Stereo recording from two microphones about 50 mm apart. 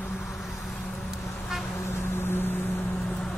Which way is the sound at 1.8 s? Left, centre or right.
Left.